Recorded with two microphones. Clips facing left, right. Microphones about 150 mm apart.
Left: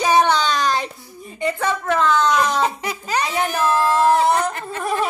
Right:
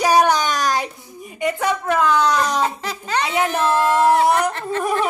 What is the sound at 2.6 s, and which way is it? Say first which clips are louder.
Giggle: left 1 dB; 15° left (ahead or behind).